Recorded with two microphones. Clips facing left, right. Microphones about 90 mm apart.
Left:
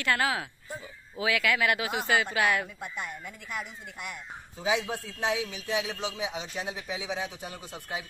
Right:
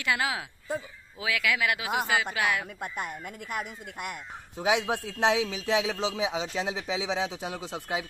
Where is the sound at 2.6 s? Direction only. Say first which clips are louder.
Right 2 dB; 50° right (ahead or behind).